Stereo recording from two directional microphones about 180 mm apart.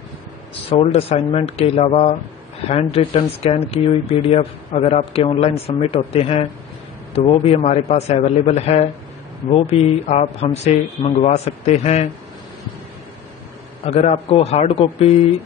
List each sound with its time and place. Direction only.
0.7 s speech: 35° left (ahead or behind)
13.8 s speech: 35° left (ahead or behind)